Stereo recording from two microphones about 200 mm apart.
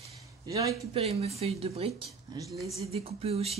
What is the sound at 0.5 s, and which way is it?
Speech, 15° right (ahead or behind).